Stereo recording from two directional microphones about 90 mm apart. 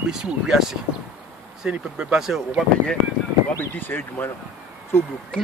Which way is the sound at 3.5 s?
25° left (ahead or behind).